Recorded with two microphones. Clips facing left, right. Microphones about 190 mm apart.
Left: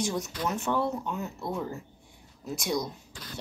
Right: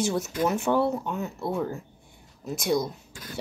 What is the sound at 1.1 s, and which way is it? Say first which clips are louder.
Speech: right 4 dB; centre (ahead or behind).